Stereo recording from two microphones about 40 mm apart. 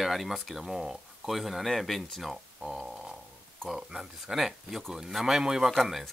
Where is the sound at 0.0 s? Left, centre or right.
Centre.